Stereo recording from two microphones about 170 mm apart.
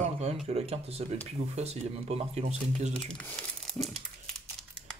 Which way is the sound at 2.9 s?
5° left (ahead or behind).